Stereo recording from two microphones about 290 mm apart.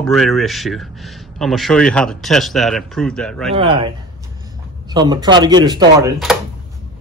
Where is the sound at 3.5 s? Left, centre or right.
Centre.